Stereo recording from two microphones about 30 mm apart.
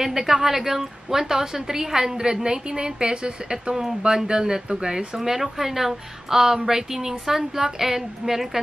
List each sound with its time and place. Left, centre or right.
0.0 s a woman's voice: centre; by 4.9 s right
4.9 s a woman's voice: centre